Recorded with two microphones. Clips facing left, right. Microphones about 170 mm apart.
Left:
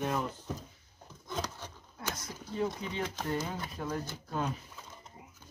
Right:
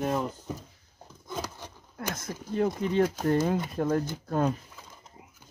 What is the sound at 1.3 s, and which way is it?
Rub, 5° right (ahead or behind).